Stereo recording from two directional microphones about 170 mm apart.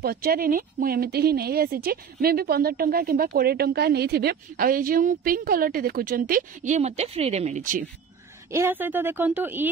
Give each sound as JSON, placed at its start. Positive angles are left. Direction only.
{"t": 0.0, "sound": "speech", "side_deg": -60}
{"t": 8.5, "sound": "a woman's voice", "side_deg": -15}